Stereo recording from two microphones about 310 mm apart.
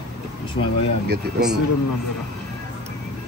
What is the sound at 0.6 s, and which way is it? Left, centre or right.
Speech, left.